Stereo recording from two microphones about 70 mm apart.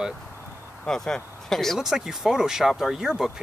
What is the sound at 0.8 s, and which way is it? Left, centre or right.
Speech, centre.